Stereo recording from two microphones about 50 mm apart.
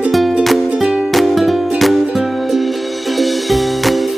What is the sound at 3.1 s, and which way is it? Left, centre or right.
Music, centre.